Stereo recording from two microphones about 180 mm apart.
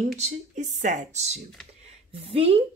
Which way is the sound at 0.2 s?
40° right (ahead or behind).